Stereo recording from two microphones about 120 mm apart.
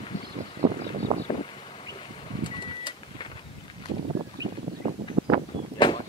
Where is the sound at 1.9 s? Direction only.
40° left (ahead or behind).